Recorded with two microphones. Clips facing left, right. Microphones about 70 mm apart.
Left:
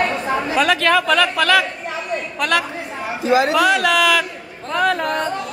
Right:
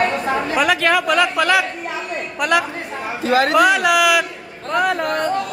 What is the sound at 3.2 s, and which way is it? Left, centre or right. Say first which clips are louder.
Speech: left 1 dB; right.